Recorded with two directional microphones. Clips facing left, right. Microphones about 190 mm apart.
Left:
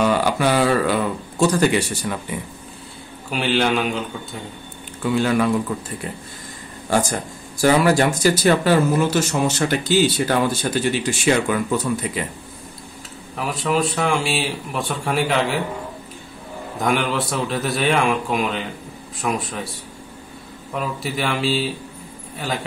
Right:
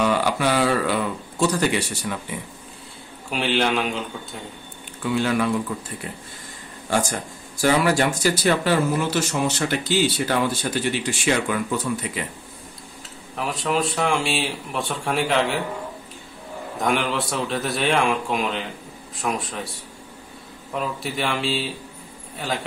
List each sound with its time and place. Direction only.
0.0 s speech: 45° left (ahead or behind)
3.3 s speech: centre (ahead or behind)
5.1 s speech: 45° left (ahead or behind)
7.6 s speech: 40° left (ahead or behind)
13.4 s speech: centre (ahead or behind)
16.8 s speech: centre (ahead or behind)
20.7 s speech: centre (ahead or behind)